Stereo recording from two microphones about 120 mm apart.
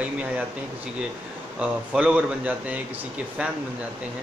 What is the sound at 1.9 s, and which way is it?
Speech, 10° right (ahead or behind).